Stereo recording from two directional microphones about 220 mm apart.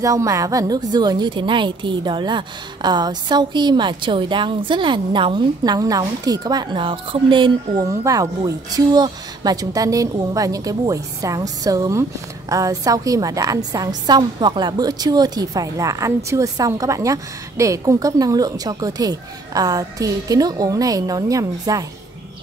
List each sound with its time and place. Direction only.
0.0 s a woman's voice: 15° right (ahead or behind)